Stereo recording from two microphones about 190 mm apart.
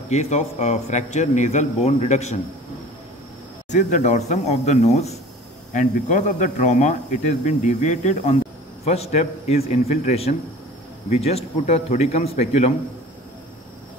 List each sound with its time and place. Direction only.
0.1 s speech: 35° left (ahead or behind)
3.7 s speech: 40° left (ahead or behind)